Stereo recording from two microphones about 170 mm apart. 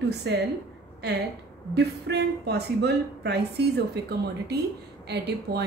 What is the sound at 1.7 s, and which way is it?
A woman's voice, 75° right (ahead or behind).